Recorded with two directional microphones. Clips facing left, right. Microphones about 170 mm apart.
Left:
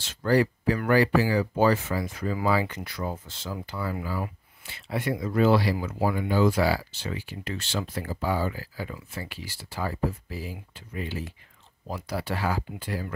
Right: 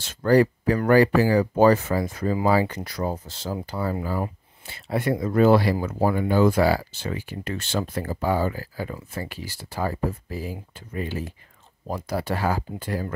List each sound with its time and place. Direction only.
0.0 s speech: 45° right (ahead or behind)